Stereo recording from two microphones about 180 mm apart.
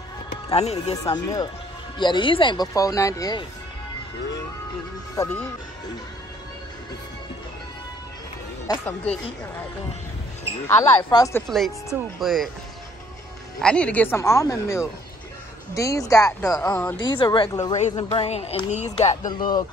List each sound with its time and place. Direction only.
0.5 s speech: 35° left (ahead or behind)
1.0 s speech: 20° left (ahead or behind)
5.1 s speech: 15° left (ahead or behind)
8.7 s speech: 20° left (ahead or behind)
10.8 s speech: 20° left (ahead or behind)
11.3 s speech: centre (ahead or behind)
13.6 s speech: 5° left (ahead or behind)
16.9 s speech: 25° left (ahead or behind)
17.7 s speech: 35° left (ahead or behind)
19.0 s speech: 25° left (ahead or behind)